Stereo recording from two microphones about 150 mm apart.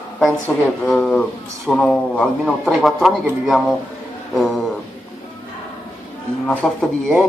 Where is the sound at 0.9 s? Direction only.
5° left (ahead or behind).